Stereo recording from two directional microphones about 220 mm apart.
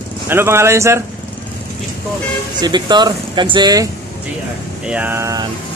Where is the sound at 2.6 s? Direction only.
20° right (ahead or behind).